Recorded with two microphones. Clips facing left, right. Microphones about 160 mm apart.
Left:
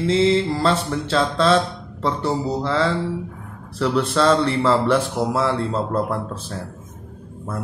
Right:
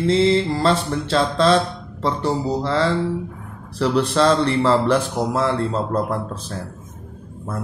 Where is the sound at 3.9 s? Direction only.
Centre (ahead or behind).